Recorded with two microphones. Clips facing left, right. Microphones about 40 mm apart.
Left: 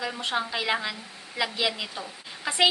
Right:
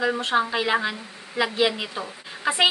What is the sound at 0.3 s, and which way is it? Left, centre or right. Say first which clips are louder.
A woman's voice: right 3 dB; centre.